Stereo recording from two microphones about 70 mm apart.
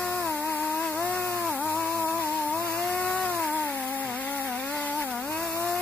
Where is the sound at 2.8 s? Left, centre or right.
Left.